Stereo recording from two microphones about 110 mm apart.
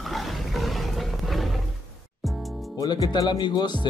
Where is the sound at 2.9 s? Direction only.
40° left (ahead or behind).